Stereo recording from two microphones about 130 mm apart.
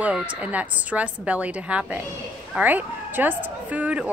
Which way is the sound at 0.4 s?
10° right (ahead or behind).